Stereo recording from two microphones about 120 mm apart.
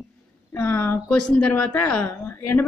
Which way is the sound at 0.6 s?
20° left (ahead or behind).